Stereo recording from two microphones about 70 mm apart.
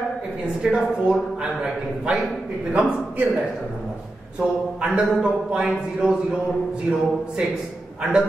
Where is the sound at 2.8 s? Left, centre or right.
Right.